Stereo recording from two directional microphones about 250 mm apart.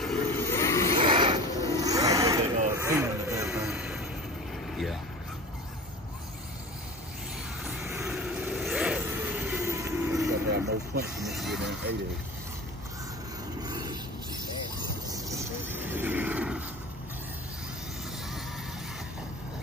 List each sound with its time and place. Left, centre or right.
0.0 s vehicle: centre
0.9 s mechanisms: right
1.8 s vehicle: centre
7.6 s vehicle: centre
10.5 s vehicle: right
11.2 s vehicle: centre
13.6 s a sound: centre
15.0 s roaring cats: centre